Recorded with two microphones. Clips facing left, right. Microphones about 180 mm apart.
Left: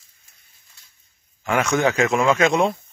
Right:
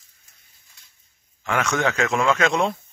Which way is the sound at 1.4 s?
10° left (ahead or behind).